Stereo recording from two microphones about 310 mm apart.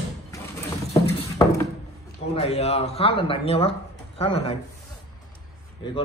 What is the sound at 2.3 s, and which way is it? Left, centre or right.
Speech, centre.